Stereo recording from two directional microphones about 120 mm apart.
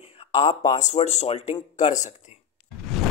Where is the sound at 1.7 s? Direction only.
80° left.